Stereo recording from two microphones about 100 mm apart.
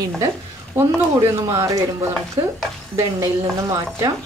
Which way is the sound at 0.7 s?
25° right (ahead or behind).